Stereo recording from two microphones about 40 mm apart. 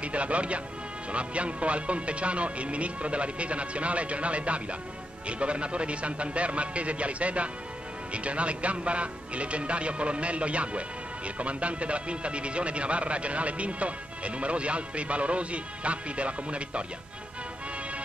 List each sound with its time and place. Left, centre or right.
0.0 s speech: right